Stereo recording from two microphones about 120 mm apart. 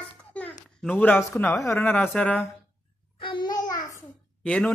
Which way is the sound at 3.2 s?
40° left (ahead or behind).